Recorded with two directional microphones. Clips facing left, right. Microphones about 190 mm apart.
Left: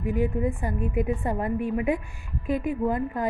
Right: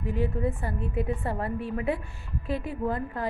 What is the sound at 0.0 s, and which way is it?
A woman's voice, 15° left (ahead or behind).